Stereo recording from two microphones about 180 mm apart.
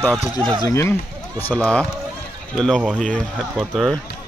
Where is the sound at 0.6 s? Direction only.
15° left (ahead or behind).